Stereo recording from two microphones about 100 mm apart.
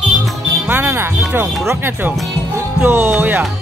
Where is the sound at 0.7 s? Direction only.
20° right (ahead or behind).